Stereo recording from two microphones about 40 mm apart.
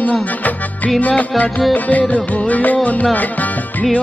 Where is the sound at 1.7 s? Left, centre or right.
Left.